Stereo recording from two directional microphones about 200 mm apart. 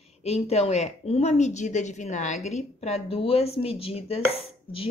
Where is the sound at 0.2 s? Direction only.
30° left (ahead or behind).